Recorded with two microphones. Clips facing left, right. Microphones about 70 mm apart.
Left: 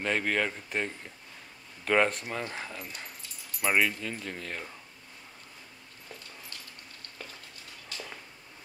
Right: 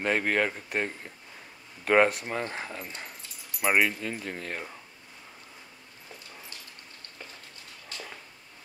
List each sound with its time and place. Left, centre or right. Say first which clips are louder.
0.0 s speech: right 3 dB; centre